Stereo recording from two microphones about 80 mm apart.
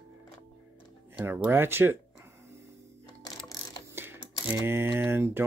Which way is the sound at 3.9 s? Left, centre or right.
Right.